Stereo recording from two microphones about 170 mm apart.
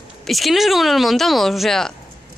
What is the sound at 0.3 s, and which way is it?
A woman's voice, centre (ahead or behind).